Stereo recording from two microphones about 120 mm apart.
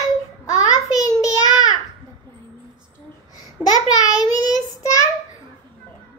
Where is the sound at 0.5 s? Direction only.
30° left (ahead or behind).